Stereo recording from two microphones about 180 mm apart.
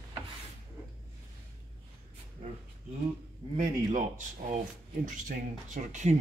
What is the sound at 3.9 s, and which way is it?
Speech, 45° right (ahead or behind).